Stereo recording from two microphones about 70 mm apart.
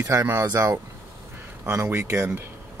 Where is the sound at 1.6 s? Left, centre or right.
Right.